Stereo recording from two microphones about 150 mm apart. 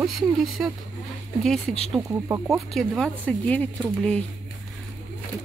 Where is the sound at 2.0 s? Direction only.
20° right (ahead or behind).